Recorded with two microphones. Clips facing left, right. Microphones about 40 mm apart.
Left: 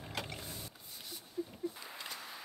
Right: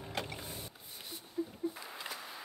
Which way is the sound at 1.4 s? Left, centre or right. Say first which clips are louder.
Right 3 dB; centre.